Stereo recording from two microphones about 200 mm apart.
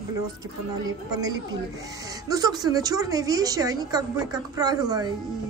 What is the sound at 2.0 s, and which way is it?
Speech, 15° right (ahead or behind).